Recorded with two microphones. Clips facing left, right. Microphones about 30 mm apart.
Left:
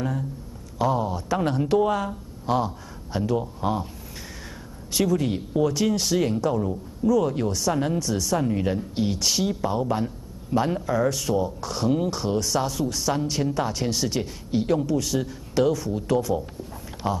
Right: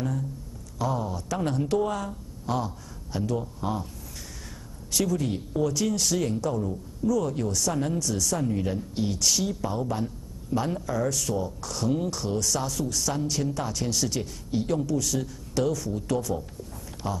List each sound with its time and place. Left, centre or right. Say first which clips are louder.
0.7 s speech: left 5 dB; left
4.9 s speech: left 4 dB; left